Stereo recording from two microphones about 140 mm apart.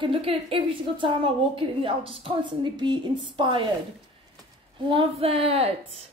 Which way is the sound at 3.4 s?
35° right (ahead or behind).